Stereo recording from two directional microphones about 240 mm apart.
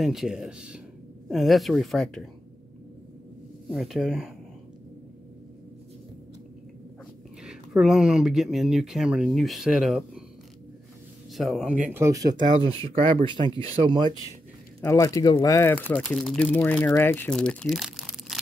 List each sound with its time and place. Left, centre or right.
0.0 s speech: centre
3.7 s speech: centre
7.4 s speech: centre
11.3 s speech: centre
11.9 s speech: centre
14.8 s speech: centre